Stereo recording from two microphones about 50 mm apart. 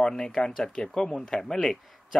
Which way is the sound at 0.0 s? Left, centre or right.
Centre.